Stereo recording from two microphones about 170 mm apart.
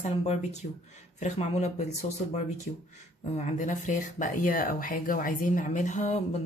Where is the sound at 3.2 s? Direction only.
40° left (ahead or behind).